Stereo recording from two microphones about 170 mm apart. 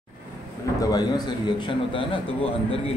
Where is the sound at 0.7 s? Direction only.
20° left (ahead or behind).